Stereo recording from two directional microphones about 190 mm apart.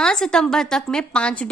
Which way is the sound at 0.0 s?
5° left (ahead or behind).